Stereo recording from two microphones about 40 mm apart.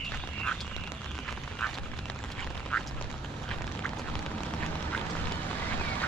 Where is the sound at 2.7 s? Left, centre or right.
Left.